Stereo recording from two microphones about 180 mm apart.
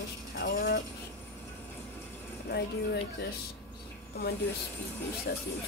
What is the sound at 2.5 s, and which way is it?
Speech, 65° left (ahead or behind).